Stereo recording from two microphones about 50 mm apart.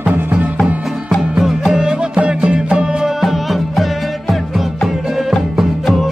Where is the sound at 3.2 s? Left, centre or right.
Centre.